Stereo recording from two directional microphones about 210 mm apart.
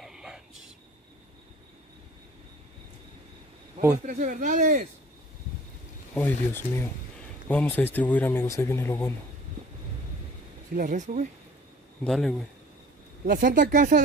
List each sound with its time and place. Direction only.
0.0 s whispering: centre (ahead or behind)
4.0 s speech: 40° right (ahead or behind)
6.1 s speech: 10° left (ahead or behind)
10.8 s speech: 35° right (ahead or behind)
12.0 s a man's voice: centre (ahead or behind)
13.2 s speech: 40° right (ahead or behind)